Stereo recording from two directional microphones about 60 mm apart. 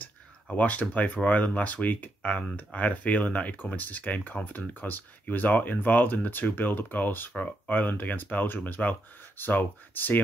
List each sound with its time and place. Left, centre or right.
0.0 s speech: left